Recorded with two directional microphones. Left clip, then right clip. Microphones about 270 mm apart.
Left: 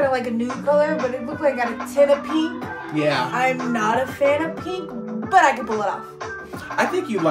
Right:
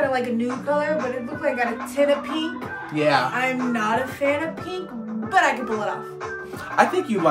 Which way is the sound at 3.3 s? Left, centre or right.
Centre.